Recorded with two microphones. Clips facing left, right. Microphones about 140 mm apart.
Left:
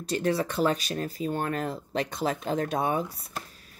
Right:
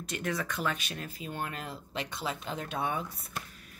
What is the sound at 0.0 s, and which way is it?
Speech, 35° left (ahead or behind).